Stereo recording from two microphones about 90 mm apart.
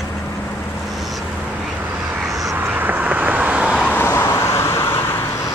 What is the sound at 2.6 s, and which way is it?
Vehicle, 20° right (ahead or behind).